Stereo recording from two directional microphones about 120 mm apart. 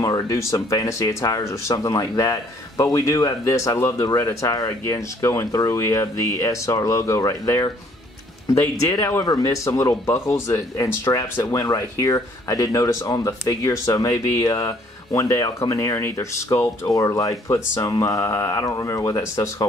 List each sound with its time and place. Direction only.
0.0 s speech: 30° left (ahead or behind)